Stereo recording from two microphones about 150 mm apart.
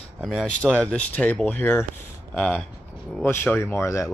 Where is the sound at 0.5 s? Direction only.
5° left (ahead or behind).